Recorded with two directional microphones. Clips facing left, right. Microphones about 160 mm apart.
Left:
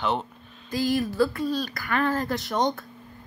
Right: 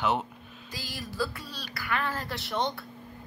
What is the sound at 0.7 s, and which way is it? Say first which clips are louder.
Speech: left 16 dB; 50° left (ahead or behind).